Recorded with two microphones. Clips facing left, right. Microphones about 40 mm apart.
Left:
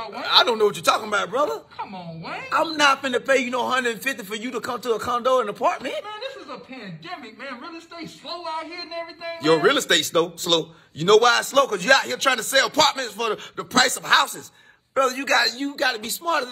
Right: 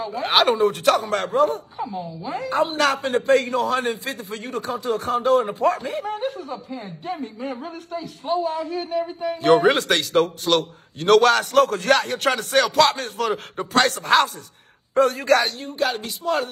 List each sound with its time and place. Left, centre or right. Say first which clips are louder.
0.0 s a man's voice: right 1 dB; left